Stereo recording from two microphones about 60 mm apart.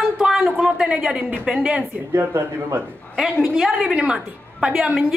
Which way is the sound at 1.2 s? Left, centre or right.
Right.